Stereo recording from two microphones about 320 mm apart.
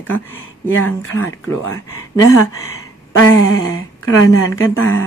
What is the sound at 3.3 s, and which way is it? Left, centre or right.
Speech, left.